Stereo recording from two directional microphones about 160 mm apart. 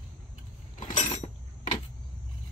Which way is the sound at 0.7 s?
50° left (ahead or behind).